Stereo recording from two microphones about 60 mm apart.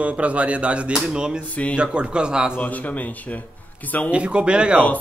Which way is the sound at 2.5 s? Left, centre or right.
Left.